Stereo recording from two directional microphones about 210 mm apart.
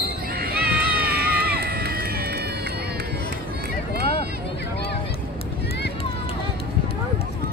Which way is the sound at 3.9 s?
50° right (ahead or behind).